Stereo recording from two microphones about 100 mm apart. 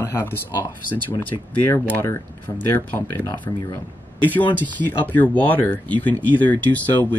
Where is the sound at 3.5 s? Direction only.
35° left (ahead or behind).